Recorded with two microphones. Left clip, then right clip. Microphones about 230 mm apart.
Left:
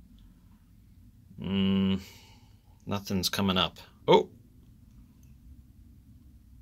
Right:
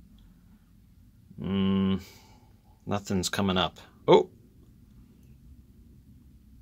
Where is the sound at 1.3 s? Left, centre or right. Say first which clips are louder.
Right 1 dB; centre.